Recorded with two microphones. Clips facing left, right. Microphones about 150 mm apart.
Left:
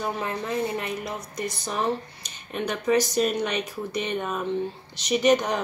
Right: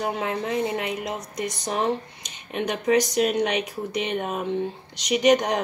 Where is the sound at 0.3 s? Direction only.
15° right (ahead or behind).